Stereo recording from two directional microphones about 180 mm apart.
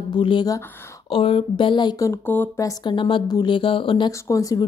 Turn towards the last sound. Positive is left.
turn(degrees=20)  # may be behind; listen again after turning